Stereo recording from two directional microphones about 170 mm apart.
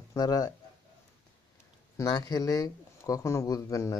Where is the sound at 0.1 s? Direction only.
20° left (ahead or behind).